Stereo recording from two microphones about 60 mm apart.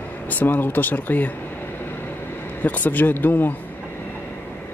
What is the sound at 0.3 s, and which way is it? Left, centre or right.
Speech, left.